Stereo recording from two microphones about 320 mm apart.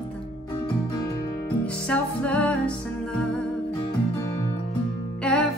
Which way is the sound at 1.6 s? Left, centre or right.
Centre.